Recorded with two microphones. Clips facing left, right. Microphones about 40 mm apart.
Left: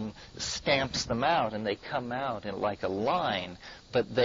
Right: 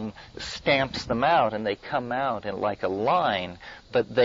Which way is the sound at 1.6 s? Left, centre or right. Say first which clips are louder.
Right 4 dB; centre.